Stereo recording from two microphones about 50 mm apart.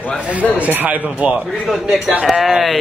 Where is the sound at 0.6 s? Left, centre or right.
Right.